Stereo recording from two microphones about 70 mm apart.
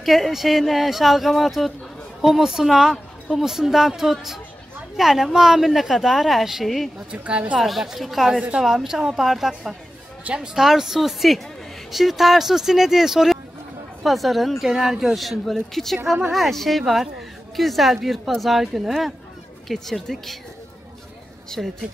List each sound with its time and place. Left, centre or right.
0.0 s a woman's voice: centre
7.1 s a woman's voice: centre
7.5 s a woman's voice: centre
21.6 s a woman's voice: centre